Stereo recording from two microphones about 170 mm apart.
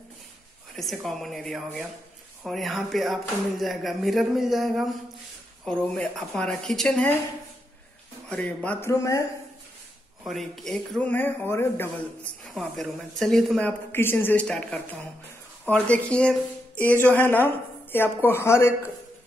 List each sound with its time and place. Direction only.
0.7 s speech: centre (ahead or behind)
8.6 s speech: 15° left (ahead or behind)
10.2 s speech: centre (ahead or behind)
12.5 s speech: centre (ahead or behind)